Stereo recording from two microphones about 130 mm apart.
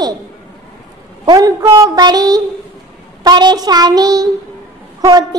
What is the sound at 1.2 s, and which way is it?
Child singing, 30° right (ahead or behind).